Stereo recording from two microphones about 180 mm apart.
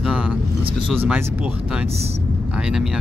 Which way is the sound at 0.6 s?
30° right (ahead or behind).